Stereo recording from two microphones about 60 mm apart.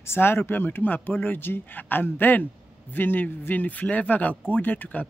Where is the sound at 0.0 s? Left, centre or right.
Left.